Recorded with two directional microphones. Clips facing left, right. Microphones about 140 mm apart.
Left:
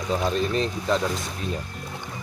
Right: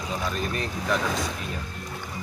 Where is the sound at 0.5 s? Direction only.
25° left (ahead or behind).